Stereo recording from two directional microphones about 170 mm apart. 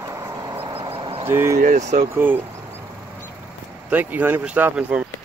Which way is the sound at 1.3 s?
15° right (ahead or behind).